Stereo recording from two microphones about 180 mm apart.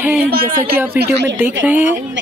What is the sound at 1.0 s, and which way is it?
Speech, 75° right (ahead or behind).